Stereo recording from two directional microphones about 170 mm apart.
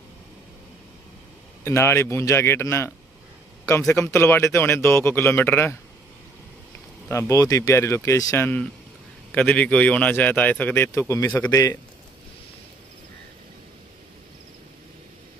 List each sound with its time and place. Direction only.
1.6 s speech: 15° left (ahead or behind)
3.9 s speech: 15° left (ahead or behind)
7.1 s speech: 15° left (ahead or behind)